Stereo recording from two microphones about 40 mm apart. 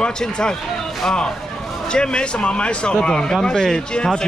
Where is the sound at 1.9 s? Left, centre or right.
Left.